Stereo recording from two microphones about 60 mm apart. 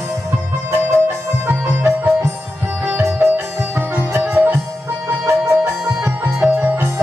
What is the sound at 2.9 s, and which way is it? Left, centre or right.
Music, right.